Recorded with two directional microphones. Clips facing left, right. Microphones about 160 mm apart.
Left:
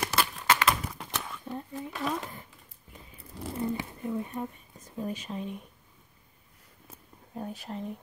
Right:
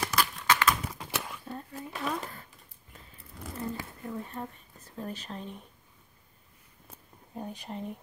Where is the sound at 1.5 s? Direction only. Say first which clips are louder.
Left 5 dB; 15° left (ahead or behind).